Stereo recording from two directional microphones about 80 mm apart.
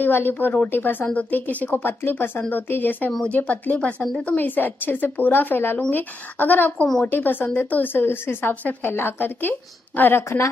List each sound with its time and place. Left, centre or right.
0.0 s speech: left
3.1 s speech: centre
3.3 s speech: centre